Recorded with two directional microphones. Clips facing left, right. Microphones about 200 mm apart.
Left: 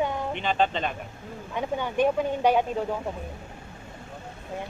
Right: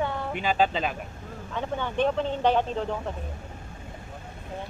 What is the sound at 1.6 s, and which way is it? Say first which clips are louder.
Speech: left 2 dB; 10° left (ahead or behind).